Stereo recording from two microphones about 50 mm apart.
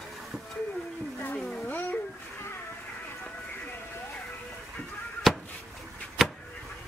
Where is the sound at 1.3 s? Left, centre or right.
Left.